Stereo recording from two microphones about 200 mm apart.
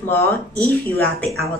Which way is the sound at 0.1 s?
10° left (ahead or behind).